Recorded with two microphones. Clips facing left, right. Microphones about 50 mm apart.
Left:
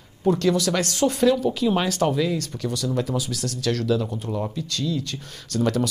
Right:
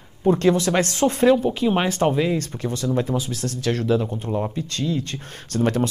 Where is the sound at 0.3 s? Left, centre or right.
Right.